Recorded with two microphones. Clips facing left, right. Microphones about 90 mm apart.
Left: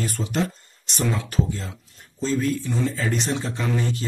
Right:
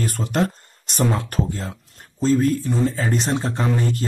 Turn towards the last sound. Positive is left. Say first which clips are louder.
# right 3 dB
turn(degrees=-45)  # may be behind; listen again after turning